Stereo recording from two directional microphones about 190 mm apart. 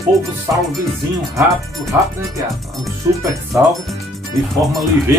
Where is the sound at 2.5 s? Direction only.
Centre (ahead or behind).